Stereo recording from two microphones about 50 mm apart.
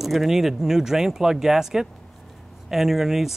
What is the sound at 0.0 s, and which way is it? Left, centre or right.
Speech, centre.